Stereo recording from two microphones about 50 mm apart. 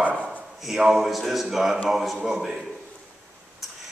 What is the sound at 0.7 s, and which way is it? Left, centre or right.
A man's voice, centre.